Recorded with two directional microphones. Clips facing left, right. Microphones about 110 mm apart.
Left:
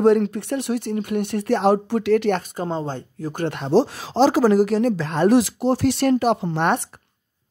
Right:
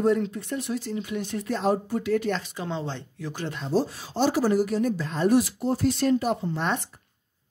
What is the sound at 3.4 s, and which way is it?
Speech, 65° left (ahead or behind).